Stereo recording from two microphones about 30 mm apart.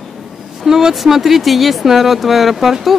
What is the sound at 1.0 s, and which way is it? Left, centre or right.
Speech, centre.